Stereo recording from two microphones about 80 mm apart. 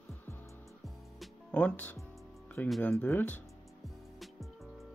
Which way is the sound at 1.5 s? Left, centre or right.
Centre.